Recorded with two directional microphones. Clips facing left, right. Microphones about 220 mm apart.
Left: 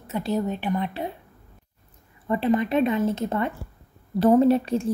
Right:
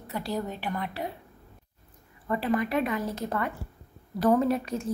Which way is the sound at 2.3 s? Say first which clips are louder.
Left 5 dB; 25° left (ahead or behind).